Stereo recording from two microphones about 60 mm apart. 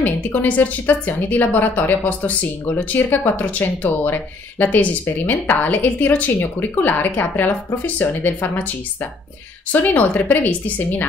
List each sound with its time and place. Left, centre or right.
0.0 s a woman's voice: left